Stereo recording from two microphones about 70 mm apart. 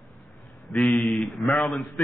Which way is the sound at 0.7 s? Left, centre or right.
Centre.